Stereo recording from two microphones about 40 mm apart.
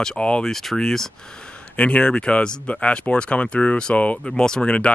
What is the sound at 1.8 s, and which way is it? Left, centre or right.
Speech, left.